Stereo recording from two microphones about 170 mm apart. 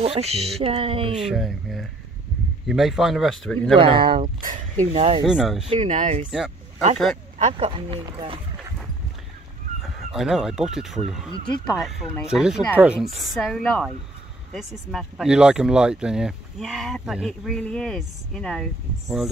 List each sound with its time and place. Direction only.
0.0 s speech: 35° right (ahead or behind)
1.1 s speech: centre (ahead or behind)
3.7 s speech: 30° right (ahead or behind)
4.2 s speech: 50° right (ahead or behind)
4.9 s speech: 35° right (ahead or behind)
5.2 s speech: 5° right (ahead or behind)
5.7 s speech: 40° right (ahead or behind)
7.5 s speech: 30° right (ahead or behind)
9.8 s speech: centre (ahead or behind)
11.3 s speech: 25° left (ahead or behind)
11.6 s speech: centre (ahead or behind)